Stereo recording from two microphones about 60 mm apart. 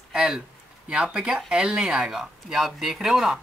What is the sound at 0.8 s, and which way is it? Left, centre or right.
Speech, centre.